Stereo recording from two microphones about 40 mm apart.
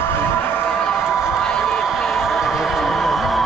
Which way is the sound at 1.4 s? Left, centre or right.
Centre.